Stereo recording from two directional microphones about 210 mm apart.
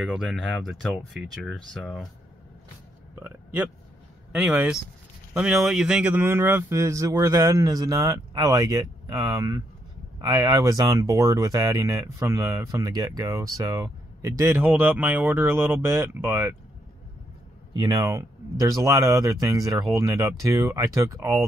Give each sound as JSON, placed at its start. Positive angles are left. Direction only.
{"t": 0.0, "sound": "speech", "side_deg": -5}
{"t": 3.2, "sound": "speech", "side_deg": -10}
{"t": 17.7, "sound": "speech", "side_deg": -20}